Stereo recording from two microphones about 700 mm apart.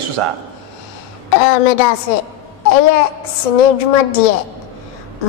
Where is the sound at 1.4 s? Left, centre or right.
Left.